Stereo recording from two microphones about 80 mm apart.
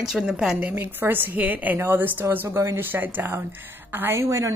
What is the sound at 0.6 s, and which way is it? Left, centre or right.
A woman's voice, centre.